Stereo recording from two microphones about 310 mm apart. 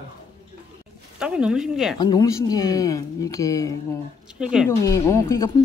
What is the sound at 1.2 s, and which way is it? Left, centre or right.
Speech, centre.